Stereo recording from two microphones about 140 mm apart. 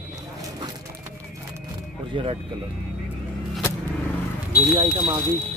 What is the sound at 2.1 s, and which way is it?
Speech, 35° right (ahead or behind).